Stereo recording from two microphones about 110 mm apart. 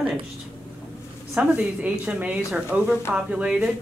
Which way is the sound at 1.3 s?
10° right (ahead or behind).